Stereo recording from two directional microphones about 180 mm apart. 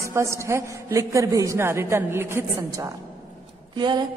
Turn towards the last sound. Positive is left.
turn(degrees=-25)  # may be behind; listen again after turning